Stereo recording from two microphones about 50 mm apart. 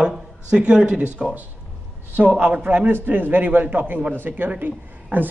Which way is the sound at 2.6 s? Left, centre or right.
Right.